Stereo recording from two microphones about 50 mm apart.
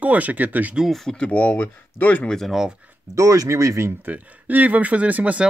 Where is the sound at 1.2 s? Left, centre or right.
Left.